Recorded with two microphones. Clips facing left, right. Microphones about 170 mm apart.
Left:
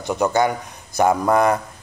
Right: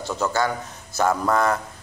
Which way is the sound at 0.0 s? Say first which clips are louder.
Left 5 dB; 15° left (ahead or behind).